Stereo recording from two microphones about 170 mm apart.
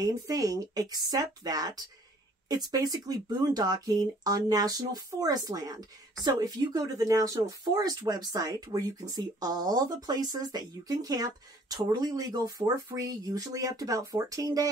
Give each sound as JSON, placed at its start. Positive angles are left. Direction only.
{"t": 0.0, "sound": "speech", "side_deg": -20}